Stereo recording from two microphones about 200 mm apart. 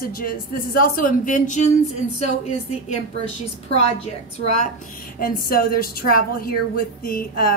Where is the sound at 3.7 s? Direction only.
35° left (ahead or behind).